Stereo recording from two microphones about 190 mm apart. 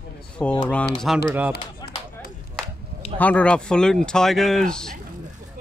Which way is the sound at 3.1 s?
5° left (ahead or behind).